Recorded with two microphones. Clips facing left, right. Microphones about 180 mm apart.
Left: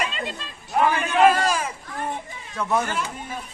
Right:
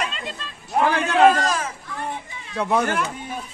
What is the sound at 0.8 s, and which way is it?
Speech, 75° right (ahead or behind).